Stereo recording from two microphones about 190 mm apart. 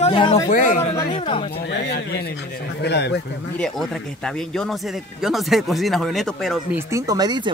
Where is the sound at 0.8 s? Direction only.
30° left (ahead or behind).